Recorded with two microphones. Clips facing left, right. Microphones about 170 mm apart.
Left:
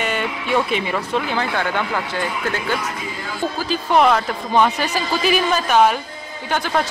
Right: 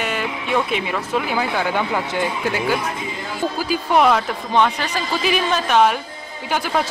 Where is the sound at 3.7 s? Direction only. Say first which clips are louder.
Left 1 dB; centre (ahead or behind).